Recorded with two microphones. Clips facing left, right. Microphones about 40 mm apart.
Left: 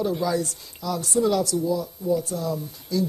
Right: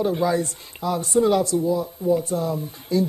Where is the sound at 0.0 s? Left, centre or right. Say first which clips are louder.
Right 3 dB; right.